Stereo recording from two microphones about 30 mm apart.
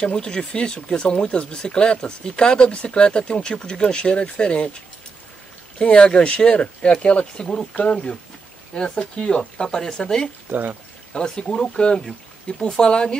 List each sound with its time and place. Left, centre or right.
0.1 s speech: left
1.0 s speech: left
2.0 s speech: left
5.8 s speech: left
6.2 s speech: left
10.5 s speech: right
11.1 s speech: left